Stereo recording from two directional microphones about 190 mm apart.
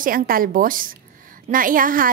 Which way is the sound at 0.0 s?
50° right (ahead or behind).